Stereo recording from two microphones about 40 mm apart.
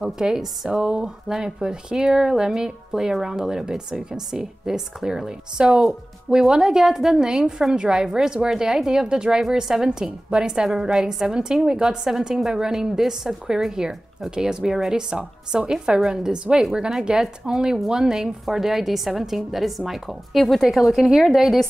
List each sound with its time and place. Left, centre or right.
0.0 s a woman's voice: centre
0.8 s a woman's voice: right; by 21.5 s centre